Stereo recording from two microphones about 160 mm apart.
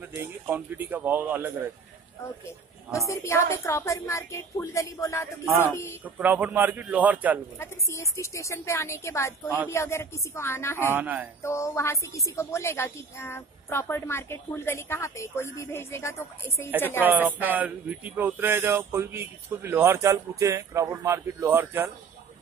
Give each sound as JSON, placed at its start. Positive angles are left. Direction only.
{"t": 0.0, "sound": "speech", "side_deg": -10}
{"t": 2.9, "sound": "a woman's voice", "side_deg": 20}
{"t": 5.4, "sound": "speech", "side_deg": -15}
{"t": 7.5, "sound": "a woman's voice", "side_deg": 15}
{"t": 10.9, "sound": "speech", "side_deg": -10}
{"t": 11.4, "sound": "a woman's voice", "side_deg": 15}
{"t": 17.0, "sound": "speech", "side_deg": -10}